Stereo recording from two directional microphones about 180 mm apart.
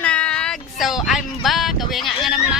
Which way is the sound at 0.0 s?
5° left (ahead or behind).